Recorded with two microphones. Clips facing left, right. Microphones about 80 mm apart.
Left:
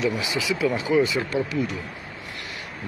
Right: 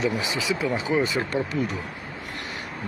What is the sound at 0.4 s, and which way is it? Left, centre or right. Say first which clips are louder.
Speech: left 3 dB; right.